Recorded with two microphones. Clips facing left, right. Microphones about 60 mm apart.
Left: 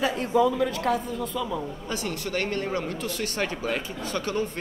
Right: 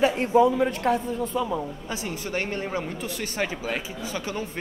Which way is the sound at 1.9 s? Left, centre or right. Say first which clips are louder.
Left 1 dB; centre.